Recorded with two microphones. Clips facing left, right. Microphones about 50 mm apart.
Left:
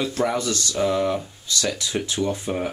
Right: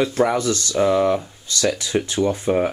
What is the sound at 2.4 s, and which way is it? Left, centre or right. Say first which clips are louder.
Speech: right 7 dB; centre.